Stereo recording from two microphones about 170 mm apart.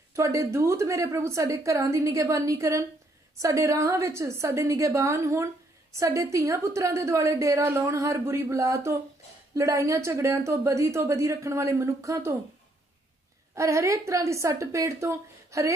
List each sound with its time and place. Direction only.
0.1 s a woman's voice: 20° right (ahead or behind)
13.6 s a woman's voice: 20° right (ahead or behind)